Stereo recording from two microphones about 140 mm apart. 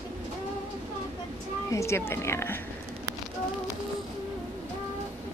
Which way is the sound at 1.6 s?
20° left (ahead or behind).